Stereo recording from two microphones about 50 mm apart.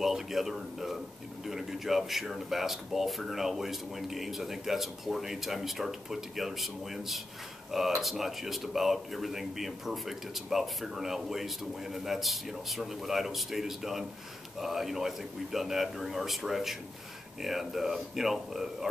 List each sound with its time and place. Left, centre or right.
0.0 s speech: centre